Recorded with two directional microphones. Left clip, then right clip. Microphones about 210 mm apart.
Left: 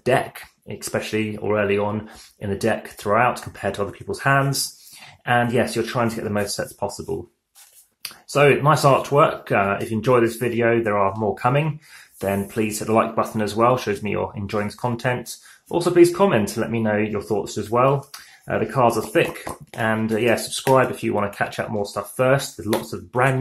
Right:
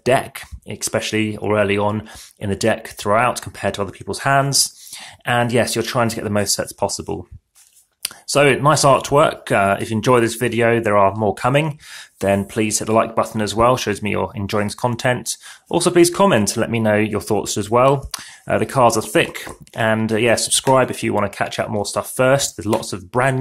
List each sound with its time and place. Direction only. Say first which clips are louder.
0.0 s speech: right 3 dB; 35° right (ahead or behind)